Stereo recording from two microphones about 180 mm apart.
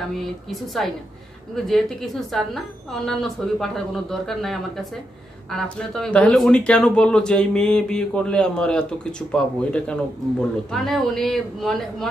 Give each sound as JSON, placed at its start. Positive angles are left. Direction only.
{"t": 0.2, "sound": "speech", "side_deg": 0}